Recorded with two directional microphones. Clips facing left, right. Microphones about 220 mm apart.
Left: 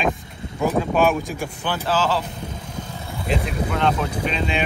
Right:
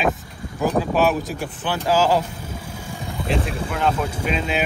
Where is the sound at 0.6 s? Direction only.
Centre (ahead or behind).